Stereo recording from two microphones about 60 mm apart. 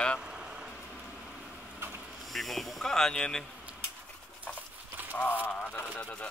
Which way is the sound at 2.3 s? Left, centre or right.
Centre.